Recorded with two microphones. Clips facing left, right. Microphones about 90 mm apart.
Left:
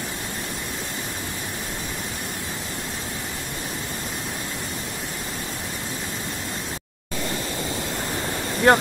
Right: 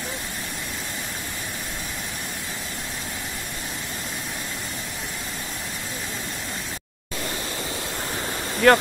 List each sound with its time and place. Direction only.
8.6 s speech: 25° left (ahead or behind)